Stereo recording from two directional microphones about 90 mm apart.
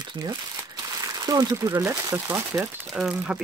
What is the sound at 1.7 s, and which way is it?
Speech, 35° right (ahead or behind).